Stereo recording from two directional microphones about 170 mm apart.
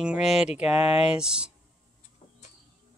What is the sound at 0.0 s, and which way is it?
Speech, 5° right (ahead or behind).